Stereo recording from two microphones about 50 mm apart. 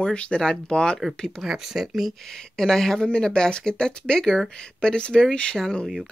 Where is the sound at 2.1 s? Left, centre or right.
Centre.